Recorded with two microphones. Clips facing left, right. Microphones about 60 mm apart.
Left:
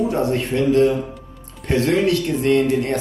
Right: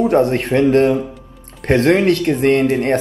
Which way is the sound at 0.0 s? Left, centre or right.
Right.